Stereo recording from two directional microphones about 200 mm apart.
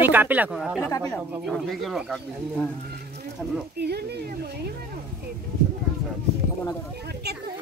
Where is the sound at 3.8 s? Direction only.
55° right (ahead or behind).